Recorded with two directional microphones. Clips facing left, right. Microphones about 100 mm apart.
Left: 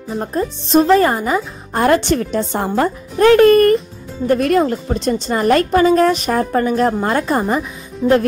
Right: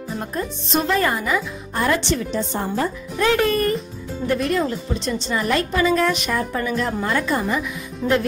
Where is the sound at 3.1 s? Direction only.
50° left (ahead or behind).